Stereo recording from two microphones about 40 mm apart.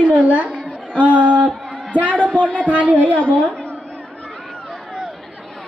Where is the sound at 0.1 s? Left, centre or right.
Right.